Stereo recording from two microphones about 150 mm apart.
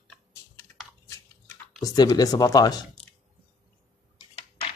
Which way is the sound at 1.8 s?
25° left (ahead or behind).